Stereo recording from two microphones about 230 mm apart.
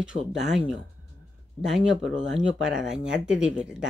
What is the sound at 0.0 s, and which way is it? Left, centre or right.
Speech, centre.